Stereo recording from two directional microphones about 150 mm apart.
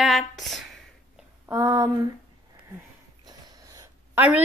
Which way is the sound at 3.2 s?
20° right (ahead or behind).